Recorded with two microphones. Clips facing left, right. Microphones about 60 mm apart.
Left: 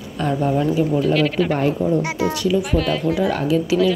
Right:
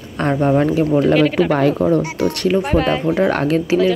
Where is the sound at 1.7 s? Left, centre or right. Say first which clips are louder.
Right 4 dB; right.